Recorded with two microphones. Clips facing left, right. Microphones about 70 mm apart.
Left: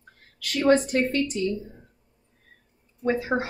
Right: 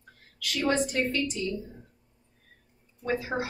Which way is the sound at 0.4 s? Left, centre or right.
Left.